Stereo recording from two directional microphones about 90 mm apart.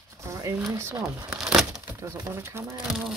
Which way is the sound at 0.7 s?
35° right (ahead or behind).